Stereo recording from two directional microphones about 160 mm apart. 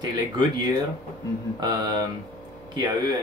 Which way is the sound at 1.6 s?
25° right (ahead or behind).